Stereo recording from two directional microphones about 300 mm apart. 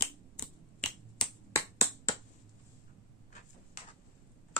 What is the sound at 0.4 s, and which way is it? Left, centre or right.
Finger snapping, centre.